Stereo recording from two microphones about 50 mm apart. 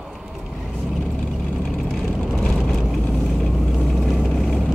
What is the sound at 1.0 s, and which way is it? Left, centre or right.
Vehicle, left.